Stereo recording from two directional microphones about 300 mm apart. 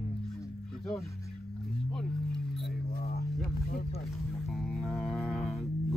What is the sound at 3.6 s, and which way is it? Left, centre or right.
Speech, left.